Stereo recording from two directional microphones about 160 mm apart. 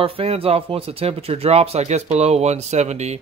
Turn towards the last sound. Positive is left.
turn(degrees=-45)  # may be behind; listen again after turning